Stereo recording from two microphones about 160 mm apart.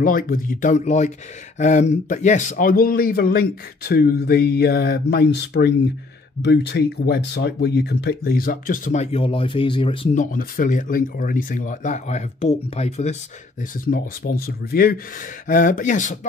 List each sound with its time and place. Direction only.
0.0 s a man's voice: 60° left (ahead or behind); by 9.9 s 30° left (ahead or behind)
10.1 s speech: 55° left (ahead or behind)
13.8 s a man's voice: 70° left (ahead or behind)
15.4 s speech: 55° left (ahead or behind)